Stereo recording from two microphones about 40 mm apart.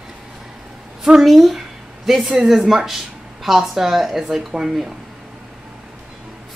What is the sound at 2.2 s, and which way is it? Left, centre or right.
Speech, centre.